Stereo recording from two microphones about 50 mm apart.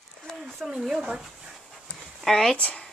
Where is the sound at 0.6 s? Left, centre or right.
Centre.